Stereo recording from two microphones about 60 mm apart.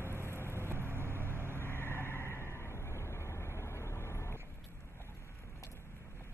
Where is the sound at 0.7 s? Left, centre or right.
Right.